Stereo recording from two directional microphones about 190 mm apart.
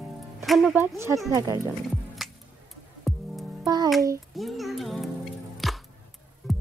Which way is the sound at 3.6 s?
20° right (ahead or behind).